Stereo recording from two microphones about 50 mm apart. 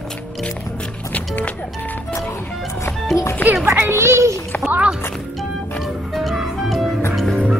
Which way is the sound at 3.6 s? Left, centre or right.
Right.